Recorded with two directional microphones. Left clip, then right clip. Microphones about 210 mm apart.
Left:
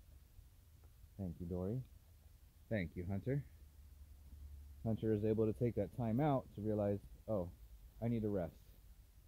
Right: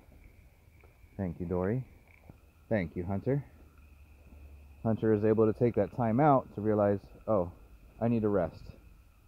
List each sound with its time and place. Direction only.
1.1 s speech: 30° right (ahead or behind)
4.8 s speech: 15° right (ahead or behind)